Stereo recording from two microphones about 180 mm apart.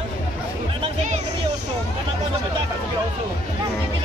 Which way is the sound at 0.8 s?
40° right (ahead or behind).